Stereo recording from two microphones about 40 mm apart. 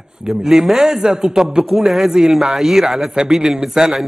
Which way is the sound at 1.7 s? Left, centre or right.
Centre.